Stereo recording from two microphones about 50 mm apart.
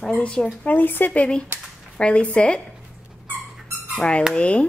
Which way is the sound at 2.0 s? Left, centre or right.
Left.